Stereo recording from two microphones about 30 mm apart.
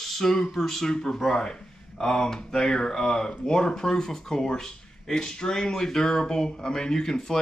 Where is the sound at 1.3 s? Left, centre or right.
Left.